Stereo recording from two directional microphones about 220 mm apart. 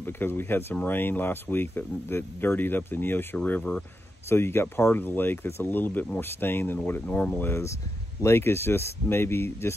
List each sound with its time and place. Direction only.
0.0 s speech: 10° left (ahead or behind)